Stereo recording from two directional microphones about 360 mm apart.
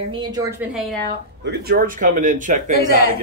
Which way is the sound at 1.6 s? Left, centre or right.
Right.